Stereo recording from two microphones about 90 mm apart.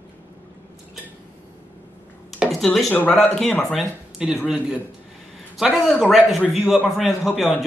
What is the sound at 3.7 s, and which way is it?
A man's voice, 5° right (ahead or behind).